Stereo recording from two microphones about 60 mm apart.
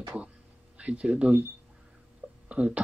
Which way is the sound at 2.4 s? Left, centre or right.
Centre.